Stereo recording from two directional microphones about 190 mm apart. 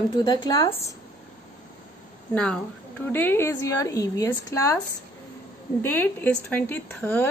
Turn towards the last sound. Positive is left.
turn(degrees=10)  # may be behind; listen again after turning